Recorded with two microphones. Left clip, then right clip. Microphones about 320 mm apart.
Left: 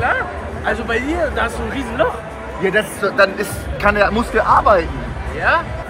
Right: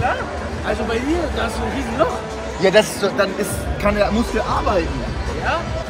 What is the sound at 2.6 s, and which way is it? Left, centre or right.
Speech, centre.